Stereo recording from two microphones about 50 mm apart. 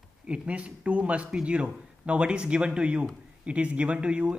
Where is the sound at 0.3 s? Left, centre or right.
Right.